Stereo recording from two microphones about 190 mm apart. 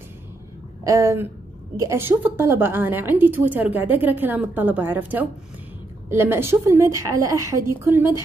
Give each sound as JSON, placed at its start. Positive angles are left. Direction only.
{"t": 0.8, "sound": "a woman's voice", "side_deg": -15}